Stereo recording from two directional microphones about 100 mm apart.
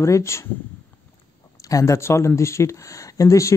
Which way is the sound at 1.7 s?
30° left (ahead or behind).